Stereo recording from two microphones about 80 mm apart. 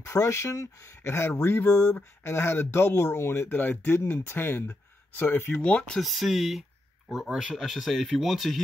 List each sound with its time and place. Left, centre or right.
0.0 s speech: left
5.5 s speech: centre
5.9 s speech: centre